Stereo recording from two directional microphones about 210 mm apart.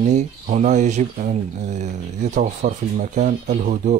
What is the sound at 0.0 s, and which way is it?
Speech, 35° right (ahead or behind).